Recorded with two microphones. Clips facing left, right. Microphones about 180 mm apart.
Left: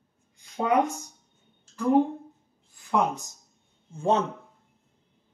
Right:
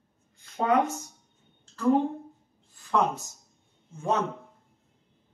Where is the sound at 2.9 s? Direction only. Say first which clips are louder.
Even; 15° left (ahead or behind).